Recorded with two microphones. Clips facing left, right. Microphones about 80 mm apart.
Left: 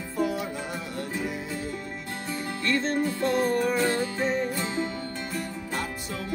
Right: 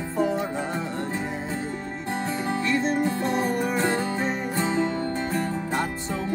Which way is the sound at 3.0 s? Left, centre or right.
Right.